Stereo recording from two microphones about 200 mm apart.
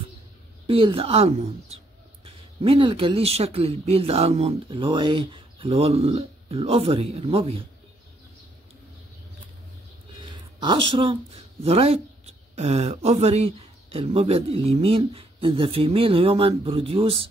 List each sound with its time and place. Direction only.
0.7 s speech: 25° right (ahead or behind)
10.2 s speech: 25° right (ahead or behind)